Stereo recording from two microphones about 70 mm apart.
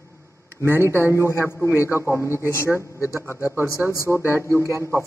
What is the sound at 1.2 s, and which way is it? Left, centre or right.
Speech, left.